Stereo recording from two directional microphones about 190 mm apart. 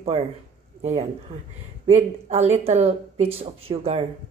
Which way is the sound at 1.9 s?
35° right (ahead or behind).